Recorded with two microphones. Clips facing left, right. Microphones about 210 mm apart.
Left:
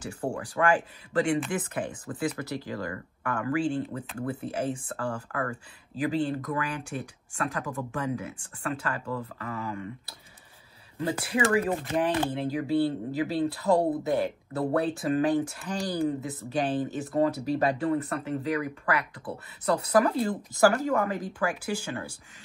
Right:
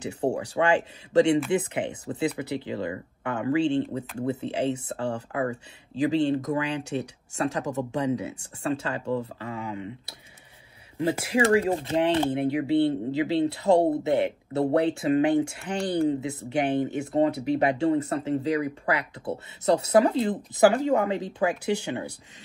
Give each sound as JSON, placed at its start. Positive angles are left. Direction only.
{"t": 0.0, "sound": "speech", "side_deg": -20}
{"t": 11.0, "sound": "speech", "side_deg": -25}